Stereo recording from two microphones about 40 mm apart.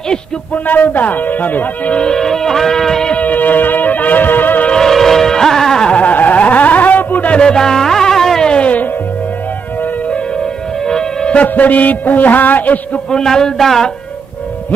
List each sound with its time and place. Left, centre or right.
0.7 s a man's voice: left
2.0 s music: centre
3.1 s music: left
4.7 s music: centre
5.9 s a sound: left
7.2 s music: left
8.5 s music: left
10.9 s music: centre
11.4 s a man's voice: left
13.1 s a man's voice: centre